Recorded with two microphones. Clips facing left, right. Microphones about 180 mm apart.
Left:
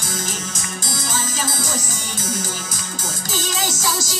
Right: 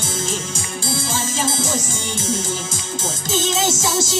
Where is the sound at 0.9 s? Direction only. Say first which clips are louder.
Right 3 dB; 25° right (ahead or behind).